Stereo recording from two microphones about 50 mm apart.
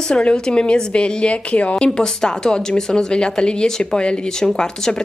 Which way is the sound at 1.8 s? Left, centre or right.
Centre.